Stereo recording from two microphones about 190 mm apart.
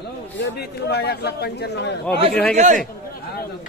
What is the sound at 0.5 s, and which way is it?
Speech, 55° left (ahead or behind).